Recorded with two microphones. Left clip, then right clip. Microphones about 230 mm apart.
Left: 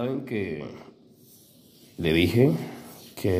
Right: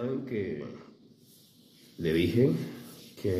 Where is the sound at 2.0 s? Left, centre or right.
Left.